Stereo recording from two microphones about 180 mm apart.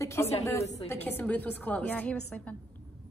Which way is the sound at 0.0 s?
15° left (ahead or behind).